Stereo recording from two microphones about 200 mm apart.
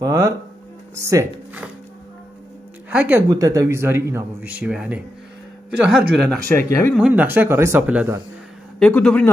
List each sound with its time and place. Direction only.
0.0 s speech: 15° right (ahead or behind)
2.9 s speech: 5° right (ahead or behind)
6.5 s speech: 10° left (ahead or behind)
7.0 s speech: 10° right (ahead or behind)
8.7 s speech: 5° left (ahead or behind)